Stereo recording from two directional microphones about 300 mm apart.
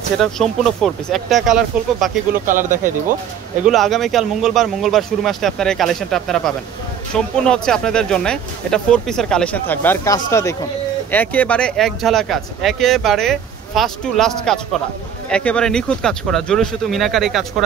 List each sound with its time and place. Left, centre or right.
0.2 s speech: centre
2.3 s speech: right
3.6 s speech: centre